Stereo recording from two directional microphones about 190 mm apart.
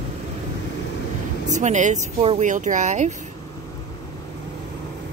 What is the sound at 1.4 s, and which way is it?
Speech, 40° right (ahead or behind).